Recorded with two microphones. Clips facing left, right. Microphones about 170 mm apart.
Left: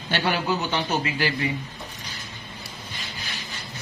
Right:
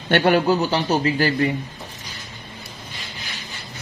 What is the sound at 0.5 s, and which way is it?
Speech, 35° right (ahead or behind).